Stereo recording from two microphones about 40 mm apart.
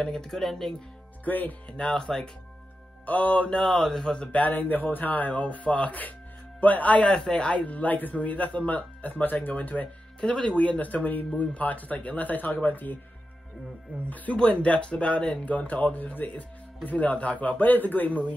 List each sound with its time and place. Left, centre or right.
0.1 s speech: centre
0.4 s speech: centre
1.2 s speech: left
1.7 s speech: left
2.0 s speech: centre
3.1 s speech: left
3.4 s speech: centre
4.3 s speech: left
7.1 s speech: left
10.2 s speech: left
14.0 s speech: left
14.3 s speech: left